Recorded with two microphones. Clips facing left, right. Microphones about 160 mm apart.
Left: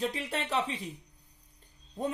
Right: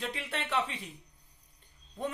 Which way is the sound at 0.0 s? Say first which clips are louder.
Left 4 dB; 40° left (ahead or behind).